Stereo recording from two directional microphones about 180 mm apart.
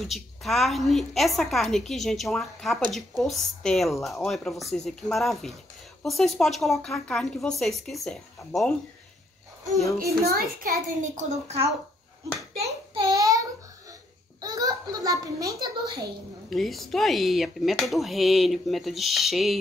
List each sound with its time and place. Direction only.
0.0 s speech: centre (ahead or behind)
10.2 s a child's voice: 55° right (ahead or behind); by 11.5 s 40° right (ahead or behind)
12.6 s child singing: 25° right (ahead or behind)
14.4 s a sound: 20° right (ahead or behind)
16.4 s speech: centre (ahead or behind)